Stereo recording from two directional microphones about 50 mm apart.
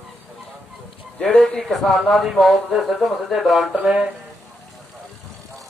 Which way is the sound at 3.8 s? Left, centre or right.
Centre.